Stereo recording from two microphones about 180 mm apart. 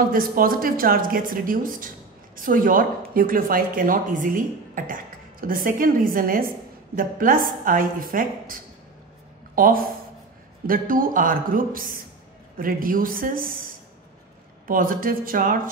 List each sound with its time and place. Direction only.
0.1 s speech: 50° right (ahead or behind)
9.6 s speech: 50° right (ahead or behind)